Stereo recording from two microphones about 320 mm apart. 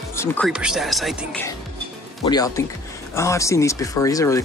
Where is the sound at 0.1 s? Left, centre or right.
Centre.